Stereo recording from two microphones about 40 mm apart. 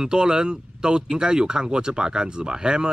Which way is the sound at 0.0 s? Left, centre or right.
Centre.